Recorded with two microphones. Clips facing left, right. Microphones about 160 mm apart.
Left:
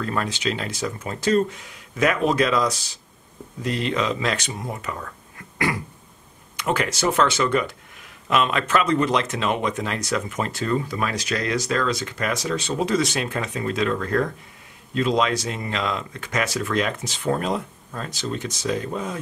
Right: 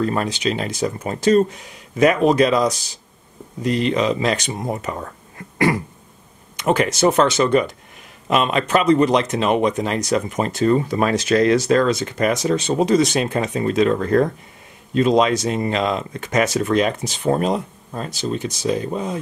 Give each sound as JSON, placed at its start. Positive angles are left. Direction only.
{"t": 0.0, "sound": "speech", "side_deg": -25}
{"t": 2.0, "sound": "speech", "side_deg": -25}
{"t": 4.6, "sound": "speech", "side_deg": -35}
{"t": 6.6, "sound": "speech", "side_deg": -20}
{"t": 18.7, "sound": "speech", "side_deg": -25}